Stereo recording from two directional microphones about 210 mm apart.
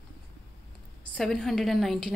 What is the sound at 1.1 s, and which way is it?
Speech, centre (ahead or behind).